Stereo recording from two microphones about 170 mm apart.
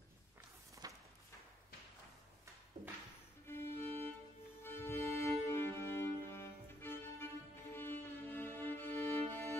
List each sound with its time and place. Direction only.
0.8 s a sound: 20° right (ahead or behind)
2.8 s music: 40° right (ahead or behind)
3.4 s music: 15° left (ahead or behind)